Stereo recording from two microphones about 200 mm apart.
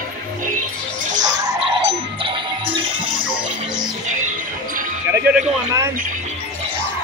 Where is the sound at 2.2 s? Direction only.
25° right (ahead or behind).